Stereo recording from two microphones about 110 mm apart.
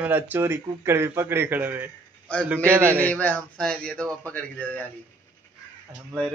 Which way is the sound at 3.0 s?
15° left (ahead or behind).